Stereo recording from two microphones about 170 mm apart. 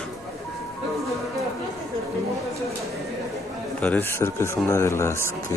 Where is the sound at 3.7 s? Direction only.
10° left (ahead or behind).